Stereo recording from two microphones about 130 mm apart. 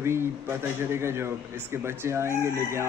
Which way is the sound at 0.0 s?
20° right (ahead or behind).